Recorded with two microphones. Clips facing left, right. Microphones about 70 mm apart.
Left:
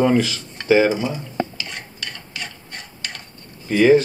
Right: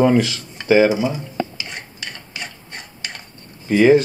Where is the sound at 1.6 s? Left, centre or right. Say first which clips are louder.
Even; centre.